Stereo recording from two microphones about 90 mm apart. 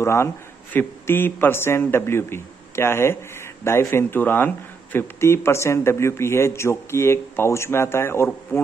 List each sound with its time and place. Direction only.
0.0 s speech: 30° left (ahead or behind)